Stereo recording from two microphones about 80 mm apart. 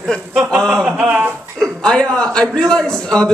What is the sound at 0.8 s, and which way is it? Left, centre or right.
Speech, centre.